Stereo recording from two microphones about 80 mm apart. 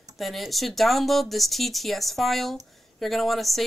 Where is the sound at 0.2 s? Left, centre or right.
Centre.